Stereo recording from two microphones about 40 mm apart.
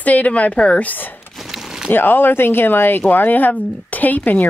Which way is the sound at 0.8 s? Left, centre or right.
Left.